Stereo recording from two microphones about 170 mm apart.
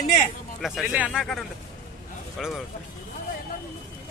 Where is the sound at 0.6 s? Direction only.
Centre (ahead or behind).